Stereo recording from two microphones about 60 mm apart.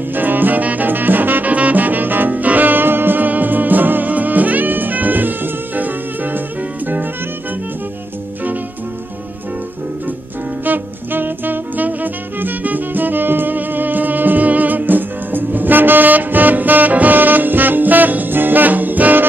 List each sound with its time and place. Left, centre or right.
0.1 s music: right
10.6 s music: right